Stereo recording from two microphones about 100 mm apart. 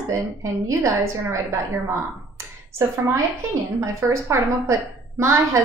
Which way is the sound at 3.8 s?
25° right (ahead or behind).